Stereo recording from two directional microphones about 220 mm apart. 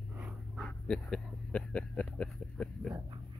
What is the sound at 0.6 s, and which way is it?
Speech, 5° left (ahead or behind).